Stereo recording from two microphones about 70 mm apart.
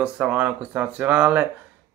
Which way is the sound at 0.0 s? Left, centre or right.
Centre.